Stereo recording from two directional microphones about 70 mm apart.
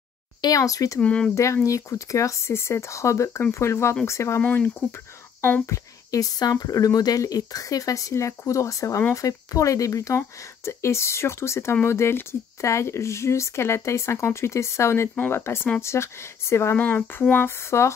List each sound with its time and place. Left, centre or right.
0.6 s speech: left
1.0 s speech: centre
1.3 s speech: left
4.4 s speech: left
5.7 s speech: left
16.7 s speech: left
17.6 s speech: left